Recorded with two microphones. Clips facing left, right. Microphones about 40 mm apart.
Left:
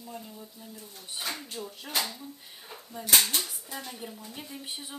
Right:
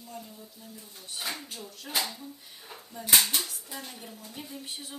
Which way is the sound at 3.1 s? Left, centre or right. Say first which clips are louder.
Even; centre.